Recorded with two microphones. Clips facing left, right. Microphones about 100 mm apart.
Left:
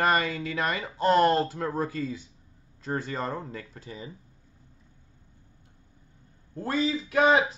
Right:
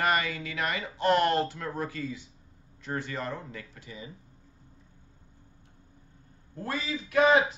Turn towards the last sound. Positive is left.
turn(degrees=30)  # may be behind; listen again after turning